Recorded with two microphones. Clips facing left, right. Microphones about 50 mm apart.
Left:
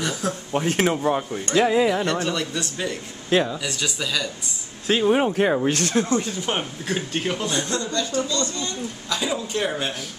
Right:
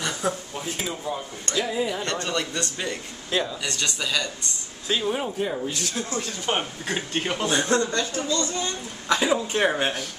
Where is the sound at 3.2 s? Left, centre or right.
Left.